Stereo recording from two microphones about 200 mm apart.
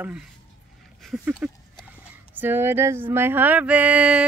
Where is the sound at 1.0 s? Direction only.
Centre (ahead or behind).